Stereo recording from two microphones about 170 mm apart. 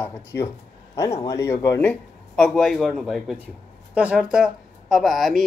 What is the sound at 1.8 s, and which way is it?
Speech, 5° left (ahead or behind).